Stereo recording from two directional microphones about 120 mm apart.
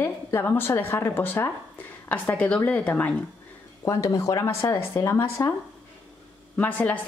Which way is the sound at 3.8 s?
25° left (ahead or behind).